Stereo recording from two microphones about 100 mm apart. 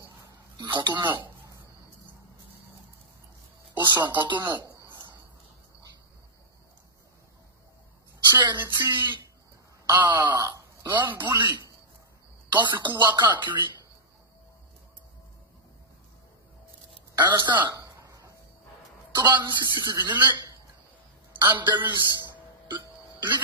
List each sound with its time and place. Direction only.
0.3 s a sound: 45° right (ahead or behind)
3.7 s speech: 45° right (ahead or behind)
4.9 s a sound: 45° right (ahead or behind)
8.4 s speech: 50° right (ahead or behind)
17.2 s speech: 45° right (ahead or behind)
17.7 s a sound: 35° right (ahead or behind)
19.1 s speech: 45° right (ahead or behind)
21.5 s speech: 50° right (ahead or behind)
22.7 s hiccup: 50° right (ahead or behind)